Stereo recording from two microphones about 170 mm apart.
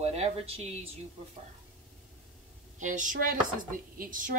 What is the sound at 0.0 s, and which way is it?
Speech, 40° right (ahead or behind).